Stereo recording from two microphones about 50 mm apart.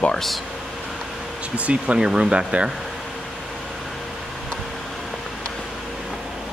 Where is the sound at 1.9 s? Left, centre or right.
Centre.